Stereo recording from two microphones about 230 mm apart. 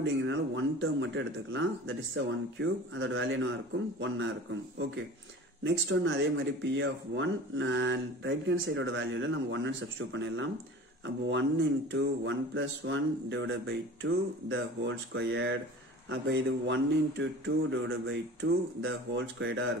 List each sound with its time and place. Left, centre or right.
0.0 s speech: right
11.9 s speech: right